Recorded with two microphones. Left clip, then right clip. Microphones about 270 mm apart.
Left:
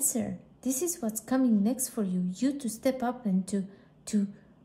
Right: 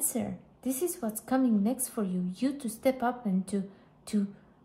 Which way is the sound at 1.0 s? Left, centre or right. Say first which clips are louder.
Left 1 dB; centre.